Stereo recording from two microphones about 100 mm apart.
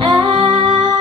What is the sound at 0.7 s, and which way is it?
Music, 50° right (ahead or behind).